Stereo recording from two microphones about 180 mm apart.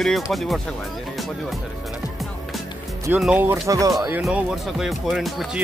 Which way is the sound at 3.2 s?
10° right (ahead or behind).